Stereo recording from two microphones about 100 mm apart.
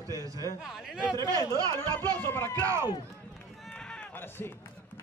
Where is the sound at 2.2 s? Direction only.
25° left (ahead or behind).